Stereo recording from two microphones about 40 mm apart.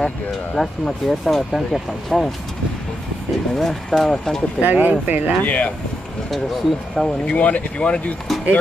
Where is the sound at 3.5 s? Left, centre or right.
Centre.